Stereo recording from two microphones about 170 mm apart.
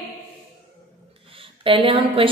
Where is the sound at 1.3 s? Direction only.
30° right (ahead or behind).